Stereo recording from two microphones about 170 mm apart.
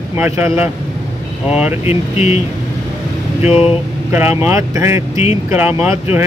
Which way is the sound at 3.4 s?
35° left (ahead or behind).